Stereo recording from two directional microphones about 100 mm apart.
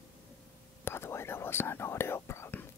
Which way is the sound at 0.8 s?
25° left (ahead or behind).